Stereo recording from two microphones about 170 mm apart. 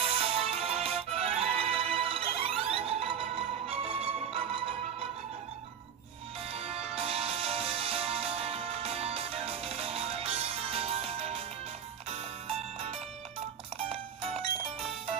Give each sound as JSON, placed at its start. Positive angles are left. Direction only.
{"t": 0.1, "sound": "music", "side_deg": -35}
{"t": 6.4, "sound": "music", "side_deg": -35}